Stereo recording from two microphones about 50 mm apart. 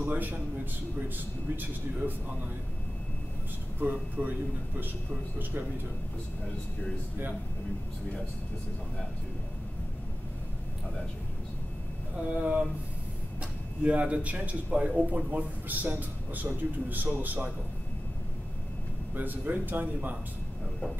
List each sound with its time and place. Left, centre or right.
0.0 s a man's voice: right
3.8 s a man's voice: right
4.2 s a man's voice: right
12.3 s a man's voice: right
19.1 s a man's voice: right